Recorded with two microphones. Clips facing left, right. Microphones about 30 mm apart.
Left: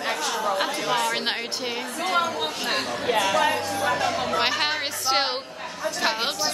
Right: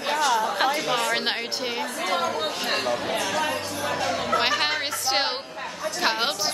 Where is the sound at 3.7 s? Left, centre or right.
Centre.